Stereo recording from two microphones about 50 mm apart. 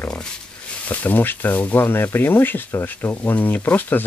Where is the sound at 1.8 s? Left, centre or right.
Left.